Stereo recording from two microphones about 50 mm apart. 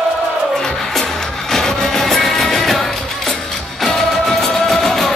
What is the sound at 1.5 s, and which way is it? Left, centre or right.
Music, centre.